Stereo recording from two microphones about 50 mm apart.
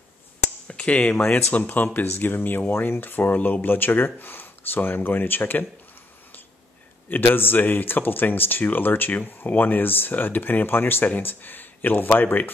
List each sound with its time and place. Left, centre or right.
0.7 s speech: left
1.2 s speech: left
7.1 s speech: left